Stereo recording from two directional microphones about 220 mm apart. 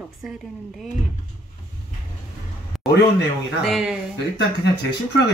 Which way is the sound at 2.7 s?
Centre (ahead or behind).